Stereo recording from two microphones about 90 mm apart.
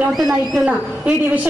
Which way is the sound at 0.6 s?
15° right (ahead or behind).